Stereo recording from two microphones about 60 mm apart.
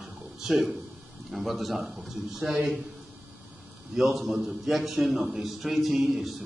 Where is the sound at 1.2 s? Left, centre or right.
Centre.